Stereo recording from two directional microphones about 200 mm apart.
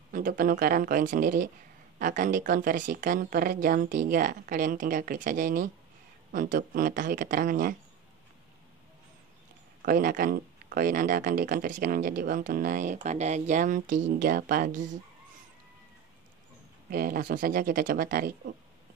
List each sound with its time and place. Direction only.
0.1 s speech: 45° right (ahead or behind)
9.8 s speech: 45° right (ahead or behind)
16.9 s speech: 45° right (ahead or behind)